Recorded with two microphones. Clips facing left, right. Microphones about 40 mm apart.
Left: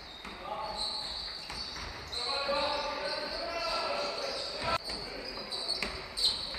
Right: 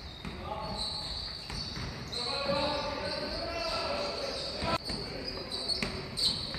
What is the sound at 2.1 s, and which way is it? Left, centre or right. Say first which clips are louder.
Basketball bounce: even; centre.